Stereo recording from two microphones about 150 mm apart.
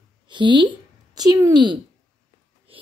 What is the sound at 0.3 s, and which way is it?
A woman's voice, 30° right (ahead or behind).